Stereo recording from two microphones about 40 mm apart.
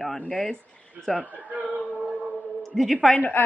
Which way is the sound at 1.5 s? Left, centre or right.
Right.